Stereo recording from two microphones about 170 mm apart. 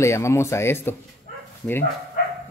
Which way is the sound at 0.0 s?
15° left (ahead or behind).